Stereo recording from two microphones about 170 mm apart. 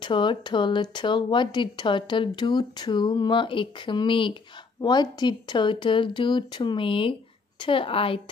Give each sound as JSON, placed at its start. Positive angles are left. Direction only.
{"t": 0.0, "sound": "speech", "side_deg": 30}